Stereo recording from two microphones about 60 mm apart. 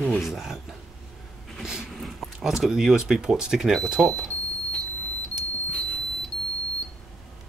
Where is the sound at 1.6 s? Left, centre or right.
Centre.